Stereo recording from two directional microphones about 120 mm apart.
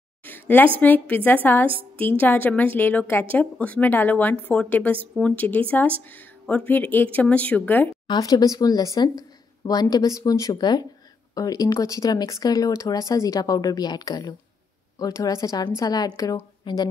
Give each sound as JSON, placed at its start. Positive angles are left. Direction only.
{"t": 0.2, "sound": "a sound", "side_deg": 15}
{"t": 0.7, "sound": "a woman's voice", "side_deg": 15}
{"t": 8.1, "sound": "a woman's voice", "side_deg": 30}
{"t": 16.6, "sound": "a woman's voice", "side_deg": 40}